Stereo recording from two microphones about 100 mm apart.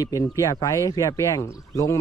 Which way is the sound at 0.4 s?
35° left (ahead or behind).